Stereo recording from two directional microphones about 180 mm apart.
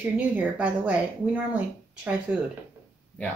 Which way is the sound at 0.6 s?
10° right (ahead or behind).